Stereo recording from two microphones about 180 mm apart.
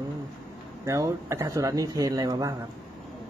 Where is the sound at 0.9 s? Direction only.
15° right (ahead or behind).